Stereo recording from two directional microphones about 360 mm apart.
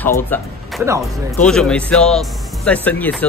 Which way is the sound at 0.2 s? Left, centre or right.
Centre.